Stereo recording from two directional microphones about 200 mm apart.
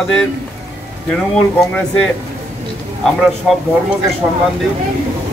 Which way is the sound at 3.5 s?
Centre (ahead or behind).